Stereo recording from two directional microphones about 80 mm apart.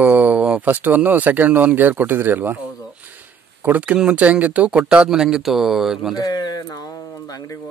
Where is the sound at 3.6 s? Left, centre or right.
Right; by 6.2 s centre.